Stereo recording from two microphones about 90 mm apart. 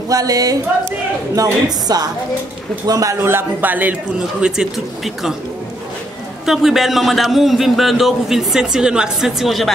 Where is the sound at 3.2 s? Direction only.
20° right (ahead or behind); by 5.3 s centre (ahead or behind).